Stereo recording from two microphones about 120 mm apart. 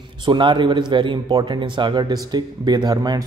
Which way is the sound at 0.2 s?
40° right (ahead or behind).